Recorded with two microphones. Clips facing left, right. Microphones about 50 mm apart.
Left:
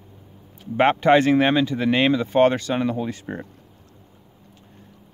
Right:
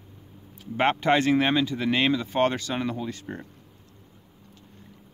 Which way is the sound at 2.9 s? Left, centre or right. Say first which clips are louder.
Left 5 dB; left.